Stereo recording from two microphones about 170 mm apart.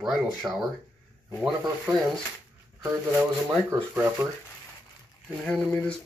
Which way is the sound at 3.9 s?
10° right (ahead or behind).